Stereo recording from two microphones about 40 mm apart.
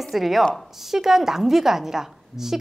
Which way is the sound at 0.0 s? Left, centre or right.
Centre.